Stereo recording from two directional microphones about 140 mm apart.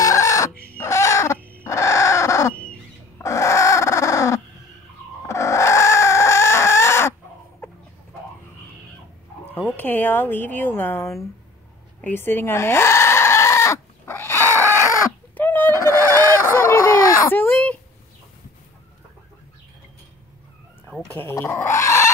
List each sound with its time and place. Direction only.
0.0 s chicken: 20° left (ahead or behind)
1.6 s bird: 20° left (ahead or behind)
3.2 s chicken: 20° left (ahead or behind)
9.5 s speech: 10° left (ahead or behind)
12.0 s chicken: 15° left (ahead or behind)
15.3 s fowl: 15° left (ahead or behind)
16.4 s a sound: 20° left (ahead or behind)
20.8 s a sound: 5° right (ahead or behind)
21.1 s dog: 15° left (ahead or behind)